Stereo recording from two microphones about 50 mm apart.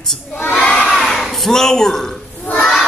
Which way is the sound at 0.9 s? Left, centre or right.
Centre.